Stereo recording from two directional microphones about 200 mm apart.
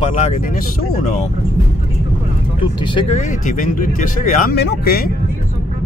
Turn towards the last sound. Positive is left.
turn(degrees=50)  # may be behind; listen again after turning